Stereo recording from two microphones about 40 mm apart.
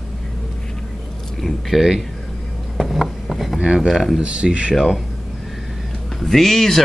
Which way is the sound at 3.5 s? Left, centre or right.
Right.